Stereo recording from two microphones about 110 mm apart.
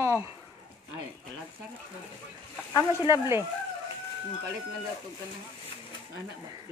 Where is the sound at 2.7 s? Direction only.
35° left (ahead or behind).